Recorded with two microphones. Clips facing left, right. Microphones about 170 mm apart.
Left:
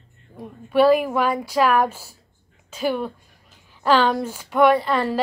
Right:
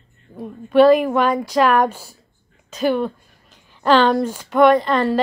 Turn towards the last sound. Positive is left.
turn(degrees=10)  # may be behind; listen again after turning